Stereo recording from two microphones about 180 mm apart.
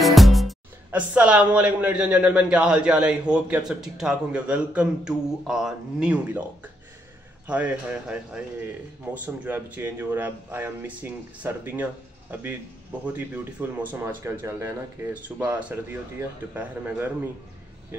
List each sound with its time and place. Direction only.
0.0 s a man's voice: centre (ahead or behind)